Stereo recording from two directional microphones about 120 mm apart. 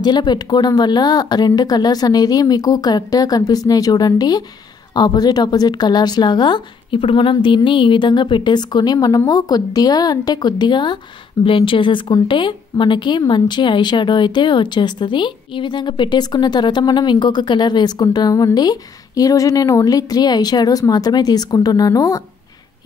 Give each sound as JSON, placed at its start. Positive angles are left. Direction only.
{"t": 0.0, "sound": "a woman's voice", "side_deg": 35}